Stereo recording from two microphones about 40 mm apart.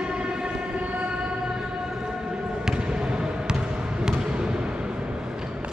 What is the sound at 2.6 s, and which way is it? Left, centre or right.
Basketball bounce, right.